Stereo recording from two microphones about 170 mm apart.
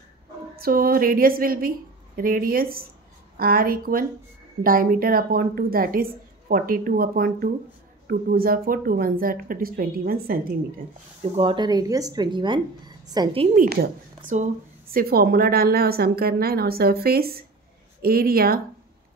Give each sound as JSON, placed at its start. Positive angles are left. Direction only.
{"t": 0.6, "sound": "a woman's voice", "side_deg": -60}
{"t": 11.3, "sound": "a woman's voice", "side_deg": -30}
{"t": 13.5, "sound": "a woman's voice", "side_deg": -60}